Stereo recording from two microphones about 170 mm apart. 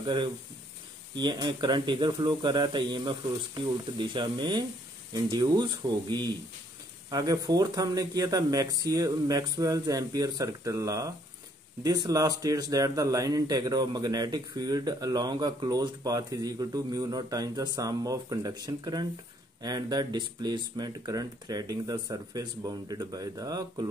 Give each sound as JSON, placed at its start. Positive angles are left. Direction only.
{"t": 0.0, "sound": "speech", "side_deg": -25}